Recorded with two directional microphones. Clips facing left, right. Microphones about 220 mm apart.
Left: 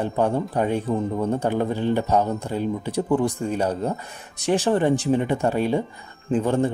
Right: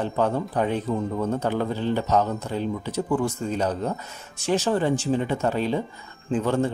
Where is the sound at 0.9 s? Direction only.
30° left (ahead or behind).